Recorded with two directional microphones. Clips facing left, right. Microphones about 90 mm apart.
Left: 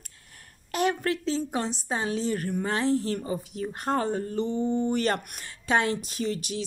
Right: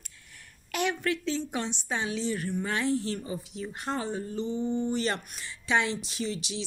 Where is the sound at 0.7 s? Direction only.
35° left (ahead or behind).